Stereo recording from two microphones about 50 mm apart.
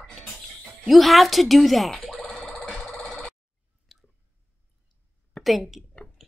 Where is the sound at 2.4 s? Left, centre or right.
Centre.